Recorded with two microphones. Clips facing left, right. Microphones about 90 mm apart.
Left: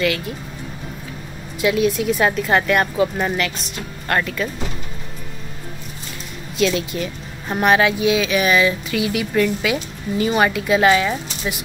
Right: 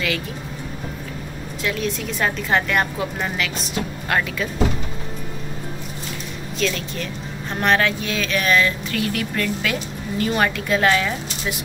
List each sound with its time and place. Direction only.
1.6 s a woman's voice: 5° left (ahead or behind)
6.6 s speech: 5° left (ahead or behind)